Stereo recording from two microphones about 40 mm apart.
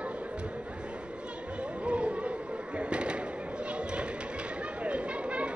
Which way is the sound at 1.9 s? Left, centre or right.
Right.